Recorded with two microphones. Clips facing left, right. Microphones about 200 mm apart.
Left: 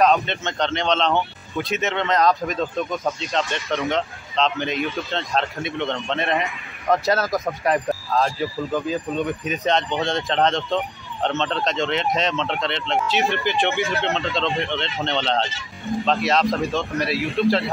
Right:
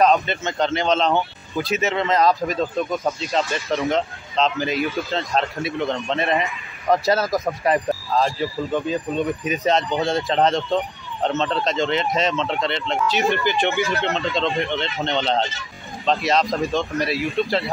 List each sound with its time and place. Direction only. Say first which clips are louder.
0.0 s speech: right 1 dB; centre (ahead or behind)